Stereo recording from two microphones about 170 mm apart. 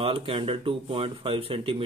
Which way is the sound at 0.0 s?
30° right (ahead or behind).